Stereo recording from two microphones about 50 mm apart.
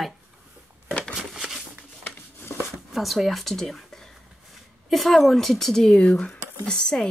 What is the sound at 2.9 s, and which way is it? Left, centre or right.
A woman's voice, centre.